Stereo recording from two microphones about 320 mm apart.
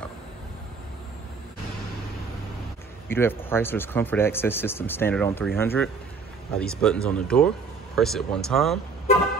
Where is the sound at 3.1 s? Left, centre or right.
Centre.